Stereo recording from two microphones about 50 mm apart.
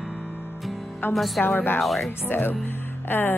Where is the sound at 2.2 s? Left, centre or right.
Left.